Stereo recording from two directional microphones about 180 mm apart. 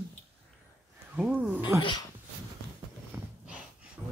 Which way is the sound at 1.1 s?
5° right (ahead or behind).